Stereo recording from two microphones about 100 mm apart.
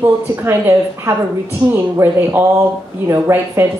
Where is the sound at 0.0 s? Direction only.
20° right (ahead or behind).